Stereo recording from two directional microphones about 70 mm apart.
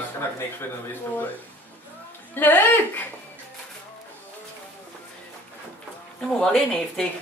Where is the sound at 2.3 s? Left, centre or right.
Left.